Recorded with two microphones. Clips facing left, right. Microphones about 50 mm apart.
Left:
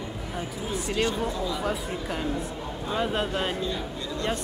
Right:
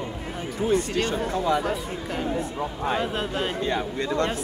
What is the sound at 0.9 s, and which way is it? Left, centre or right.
Speech, centre.